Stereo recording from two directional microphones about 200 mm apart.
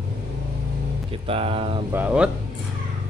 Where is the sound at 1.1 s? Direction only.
25° right (ahead or behind).